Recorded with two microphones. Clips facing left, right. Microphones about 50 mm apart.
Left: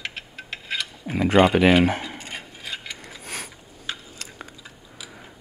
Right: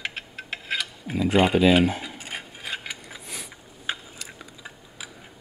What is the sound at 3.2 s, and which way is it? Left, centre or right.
Mechanisms, left.